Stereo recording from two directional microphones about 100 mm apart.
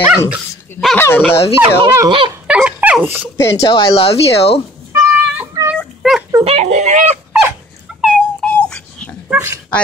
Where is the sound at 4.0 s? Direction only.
80° left.